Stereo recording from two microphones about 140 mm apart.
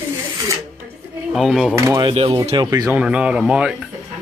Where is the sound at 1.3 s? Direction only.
Centre (ahead or behind).